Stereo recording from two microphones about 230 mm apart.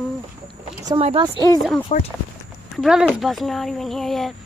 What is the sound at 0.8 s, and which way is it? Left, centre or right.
Speech, right.